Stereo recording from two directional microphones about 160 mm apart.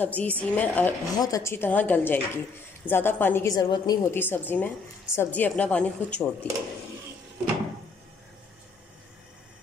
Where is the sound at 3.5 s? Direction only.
25° left (ahead or behind).